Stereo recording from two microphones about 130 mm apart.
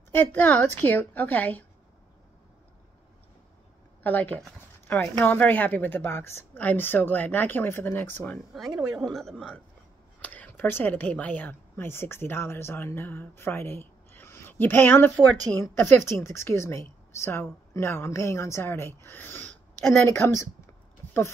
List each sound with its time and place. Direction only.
0.1 s a woman's voice: 15° left (ahead or behind)
4.0 s a woman's voice: 15° left (ahead or behind)
8.5 s a woman's voice: 5° right (ahead or behind); by 20.4 s 20° left (ahead or behind)